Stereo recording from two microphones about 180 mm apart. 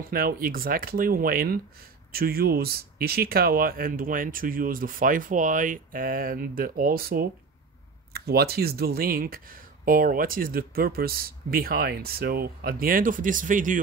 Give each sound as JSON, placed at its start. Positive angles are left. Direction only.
{"t": 0.0, "sound": "speech", "side_deg": -55}